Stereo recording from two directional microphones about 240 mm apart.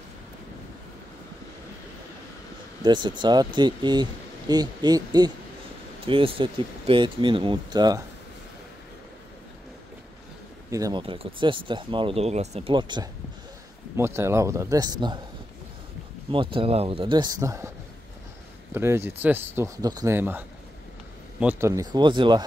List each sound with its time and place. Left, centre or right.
2.8 s speech: centre
10.7 s speech: centre
16.3 s speech: right
18.7 s speech: centre